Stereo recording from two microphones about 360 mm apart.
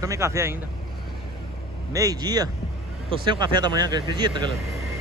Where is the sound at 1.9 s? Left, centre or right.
Centre.